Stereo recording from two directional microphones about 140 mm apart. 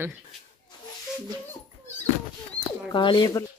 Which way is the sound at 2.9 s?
35° left (ahead or behind).